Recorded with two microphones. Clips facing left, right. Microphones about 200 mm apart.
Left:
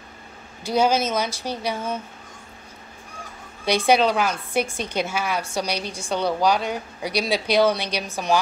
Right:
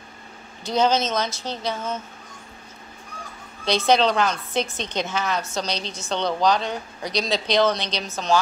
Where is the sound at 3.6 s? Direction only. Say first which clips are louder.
Left 1 dB; 10° left (ahead or behind).